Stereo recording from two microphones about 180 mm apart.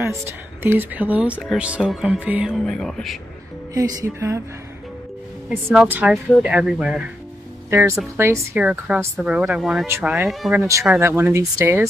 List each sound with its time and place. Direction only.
0.6 s speech: 10° right (ahead or behind)
3.7 s speech: 20° right (ahead or behind)
5.9 s speech: 10° right (ahead or behind)
7.7 s speech: 15° right (ahead or behind)
9.8 s speech: 15° right (ahead or behind)
10.4 s speech: centre (ahead or behind)
10.9 s speech: 15° right (ahead or behind)